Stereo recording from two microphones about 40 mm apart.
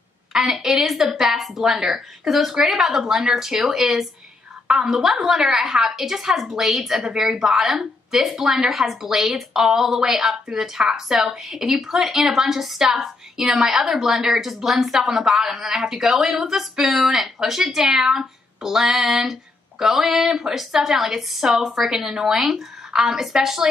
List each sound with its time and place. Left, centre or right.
0.3 s a woman's voice: centre